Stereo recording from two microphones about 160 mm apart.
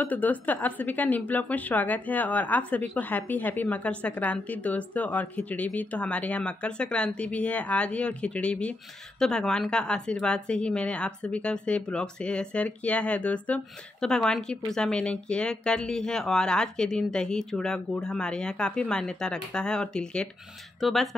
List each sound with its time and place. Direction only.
0.0 s a woman's voice: 10° left (ahead or behind)